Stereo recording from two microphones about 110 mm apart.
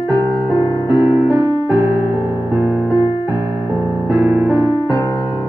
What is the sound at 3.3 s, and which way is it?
Keyboard, 20° right (ahead or behind).